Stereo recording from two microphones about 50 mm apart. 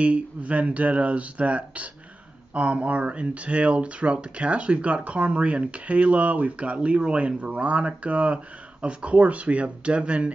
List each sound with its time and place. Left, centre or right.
0.0 s speech: right